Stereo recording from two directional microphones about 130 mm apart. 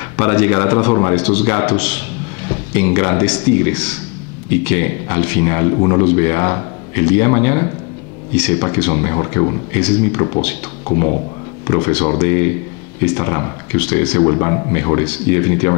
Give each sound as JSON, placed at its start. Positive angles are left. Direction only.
{"t": 0.2, "sound": "a man's voice", "side_deg": 20}
{"t": 9.8, "sound": "a man's voice", "side_deg": 15}
{"t": 11.6, "sound": "speech", "side_deg": 25}
{"t": 14.2, "sound": "speech", "side_deg": 25}